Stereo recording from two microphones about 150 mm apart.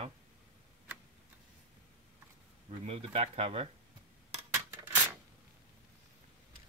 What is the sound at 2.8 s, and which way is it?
Speech, 45° right (ahead or behind).